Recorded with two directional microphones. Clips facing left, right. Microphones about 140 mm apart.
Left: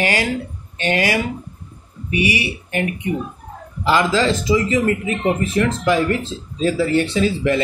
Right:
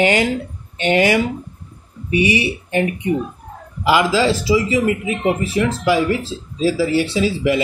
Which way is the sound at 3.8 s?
10° right (ahead or behind).